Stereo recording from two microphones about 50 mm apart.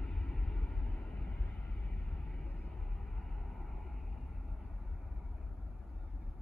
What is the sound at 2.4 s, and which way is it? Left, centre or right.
Vehicle, left.